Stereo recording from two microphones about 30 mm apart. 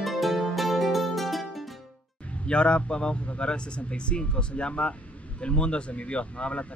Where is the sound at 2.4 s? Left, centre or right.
Left.